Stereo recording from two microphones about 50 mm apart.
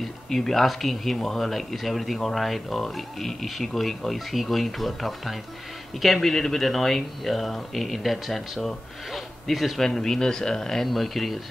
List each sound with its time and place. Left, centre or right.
0.0 s speech: centre